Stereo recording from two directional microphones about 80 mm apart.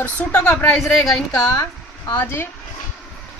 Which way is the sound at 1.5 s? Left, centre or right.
Left.